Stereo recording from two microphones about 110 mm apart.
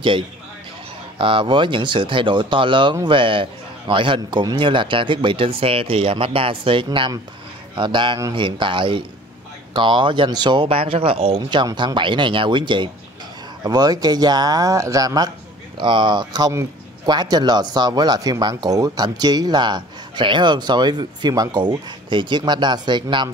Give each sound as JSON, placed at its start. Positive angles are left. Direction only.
{"t": 1.1, "sound": "speech", "side_deg": -50}
{"t": 13.7, "sound": "speech", "side_deg": -35}
{"t": 15.8, "sound": "speech", "side_deg": -45}